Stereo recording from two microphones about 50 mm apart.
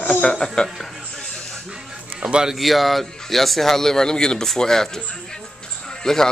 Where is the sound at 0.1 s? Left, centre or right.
Centre.